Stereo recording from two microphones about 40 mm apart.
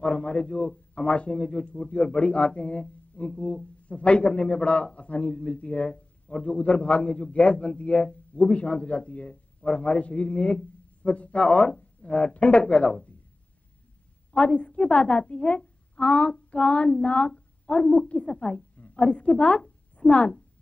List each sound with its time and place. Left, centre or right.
0.0 s a man's voice: left
14.3 s a woman's voice: left